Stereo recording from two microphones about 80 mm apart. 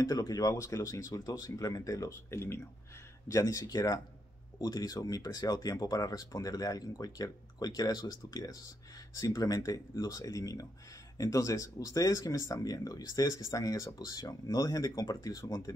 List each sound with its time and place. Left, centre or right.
0.0 s speech: left
3.3 s speech: left